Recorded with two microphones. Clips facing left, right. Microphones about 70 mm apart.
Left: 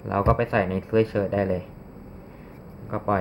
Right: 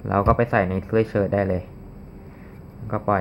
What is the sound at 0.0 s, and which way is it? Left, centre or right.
Speech, centre.